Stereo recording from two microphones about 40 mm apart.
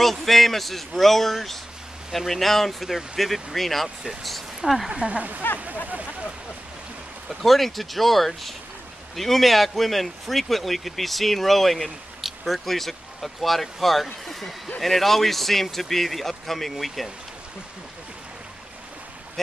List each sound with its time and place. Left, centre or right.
0.0 s speech: centre
4.6 s speech: centre
4.9 s speech: right
5.4 s speech: left
7.2 s speech: centre